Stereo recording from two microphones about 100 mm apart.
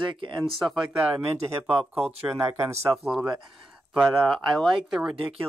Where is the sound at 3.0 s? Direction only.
5° right (ahead or behind).